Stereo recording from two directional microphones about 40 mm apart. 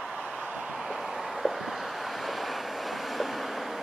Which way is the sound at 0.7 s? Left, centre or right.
Centre.